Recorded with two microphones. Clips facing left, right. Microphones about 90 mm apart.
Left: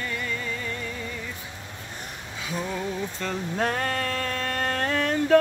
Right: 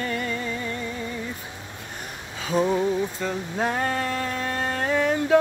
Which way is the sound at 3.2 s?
10° right (ahead or behind).